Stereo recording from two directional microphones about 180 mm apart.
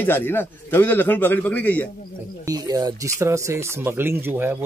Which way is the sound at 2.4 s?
20° right (ahead or behind).